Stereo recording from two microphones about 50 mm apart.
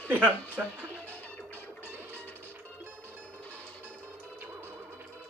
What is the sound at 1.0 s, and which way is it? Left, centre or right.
Music, left.